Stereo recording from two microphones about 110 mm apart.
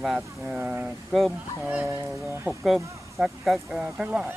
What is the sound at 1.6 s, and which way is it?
Speech, 15° right (ahead or behind).